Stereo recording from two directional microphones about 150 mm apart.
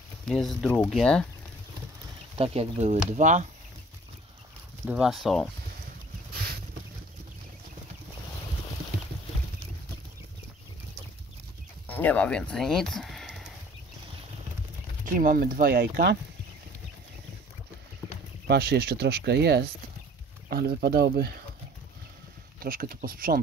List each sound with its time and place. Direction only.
0.2 s speech: 5° left (ahead or behind)
2.3 s speech: 40° right (ahead or behind)
4.8 s speech: 5° right (ahead or behind)
11.9 s speech: 10° left (ahead or behind)
15.0 s speech: 65° right (ahead or behind); by 16.2 s 90° right
18.5 s speech: 90° right
22.6 s speech: 75° right (ahead or behind)